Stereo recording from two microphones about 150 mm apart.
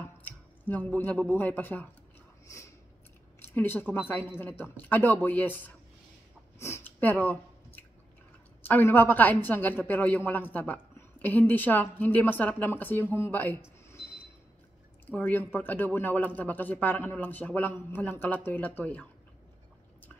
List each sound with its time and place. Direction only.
0.0 s speech: 10° left (ahead or behind)
3.3 s a woman's voice: 15° left (ahead or behind)
6.6 s chewing: 15° left (ahead or behind)
8.6 s a woman's voice: 15° left (ahead or behind)
15.0 s a woman's voice: 10° left (ahead or behind)